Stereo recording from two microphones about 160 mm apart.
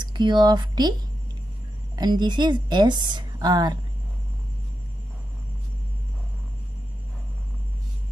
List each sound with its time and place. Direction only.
0.0 s speech: 30° right (ahead or behind)
2.0 s speech: 25° right (ahead or behind)